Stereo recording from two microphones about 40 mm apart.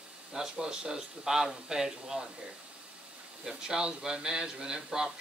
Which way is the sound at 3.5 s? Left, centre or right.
Centre.